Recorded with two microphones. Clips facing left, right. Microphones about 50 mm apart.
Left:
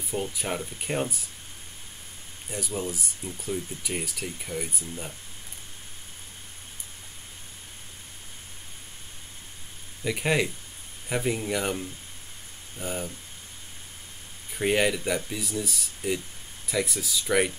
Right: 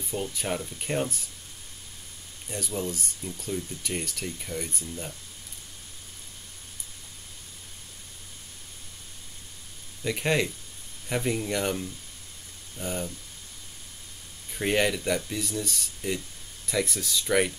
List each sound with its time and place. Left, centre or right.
0.1 s speech: centre
2.5 s speech: centre
10.0 s speech: centre
14.5 s speech: centre